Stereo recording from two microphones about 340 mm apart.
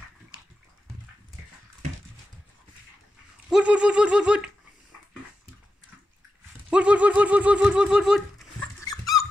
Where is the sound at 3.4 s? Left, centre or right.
Centre.